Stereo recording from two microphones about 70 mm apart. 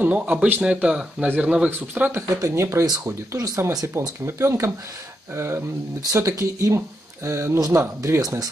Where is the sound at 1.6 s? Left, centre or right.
Right.